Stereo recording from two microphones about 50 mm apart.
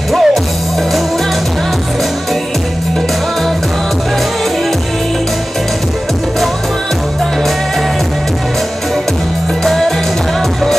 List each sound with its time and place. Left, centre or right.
0.1 s music: centre
9.7 s music: centre